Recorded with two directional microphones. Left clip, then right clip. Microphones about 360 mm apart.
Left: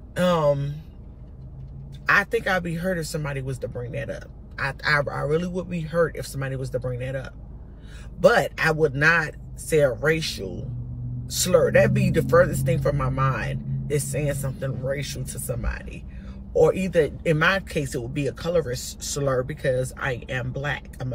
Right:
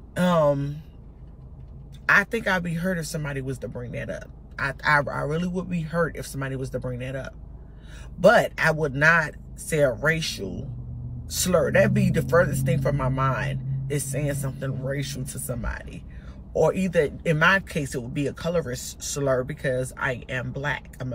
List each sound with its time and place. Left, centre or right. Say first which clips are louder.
0.2 s speech: even; centre
2.0 s speech: even; centre
11.4 s speech: left 2 dB; centre